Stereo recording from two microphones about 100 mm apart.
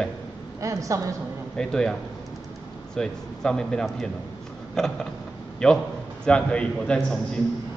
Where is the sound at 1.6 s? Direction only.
5° left (ahead or behind).